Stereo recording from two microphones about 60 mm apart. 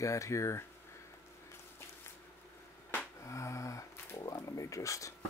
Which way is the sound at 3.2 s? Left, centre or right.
Left.